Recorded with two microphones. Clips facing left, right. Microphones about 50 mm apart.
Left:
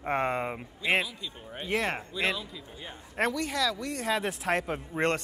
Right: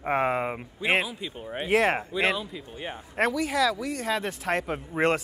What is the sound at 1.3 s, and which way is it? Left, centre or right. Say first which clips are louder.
Speech: right 7 dB; right.